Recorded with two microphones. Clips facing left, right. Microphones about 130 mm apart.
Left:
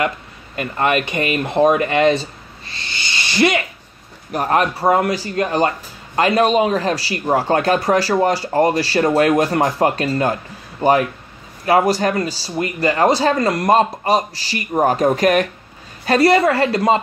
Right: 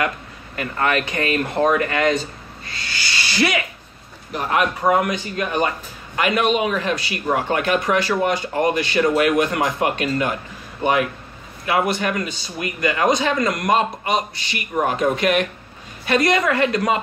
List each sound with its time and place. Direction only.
0.6 s speech: 20° left (ahead or behind)
4.3 s a man's voice: 45° left (ahead or behind)